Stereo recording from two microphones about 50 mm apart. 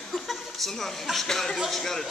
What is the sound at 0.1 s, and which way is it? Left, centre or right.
A woman's voice, centre.